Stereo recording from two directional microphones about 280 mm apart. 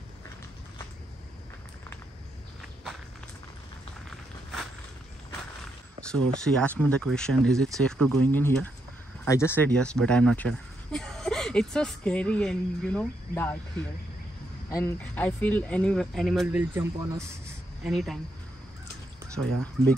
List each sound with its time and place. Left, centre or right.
5.9 s a sound: centre
6.3 s speech: centre
14.7 s speech: centre
19.4 s speech: right